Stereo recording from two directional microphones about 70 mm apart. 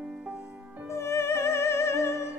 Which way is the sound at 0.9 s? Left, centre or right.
Left.